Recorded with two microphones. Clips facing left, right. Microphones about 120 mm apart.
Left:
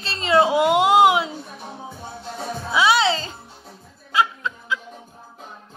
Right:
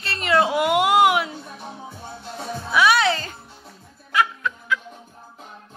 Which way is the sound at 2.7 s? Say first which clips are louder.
Even; 25° left (ahead or behind).